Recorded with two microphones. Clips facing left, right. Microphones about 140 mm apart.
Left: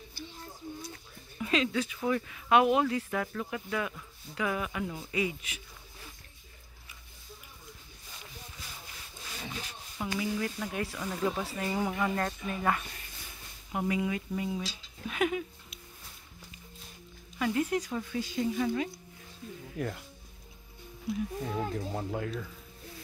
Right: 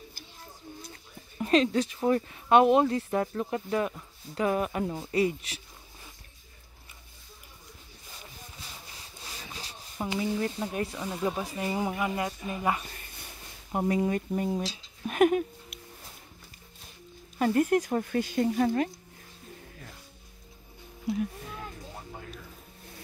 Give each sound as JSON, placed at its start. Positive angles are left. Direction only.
{"t": 1.4, "sound": "speech", "side_deg": -40}
{"t": 9.6, "sound": "speech", "side_deg": -30}
{"t": 13.7, "sound": "speech", "side_deg": -40}
{"t": 15.0, "sound": "a sound", "side_deg": -50}
{"t": 17.4, "sound": "speech", "side_deg": -45}
{"t": 21.5, "sound": "speech", "side_deg": 90}